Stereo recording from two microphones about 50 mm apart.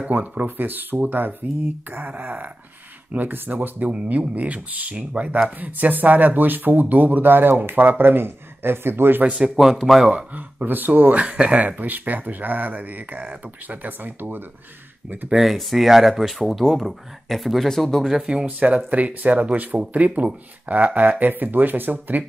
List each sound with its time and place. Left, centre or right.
0.1 s speech: right
9.3 s a man's voice: centre
10.3 s speech: right
15.2 s a man's voice: centre
18.2 s a man's voice: centre
18.9 s speech: right